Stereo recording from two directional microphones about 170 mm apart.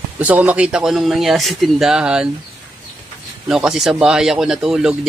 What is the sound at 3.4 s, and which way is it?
Speech, 5° right (ahead or behind).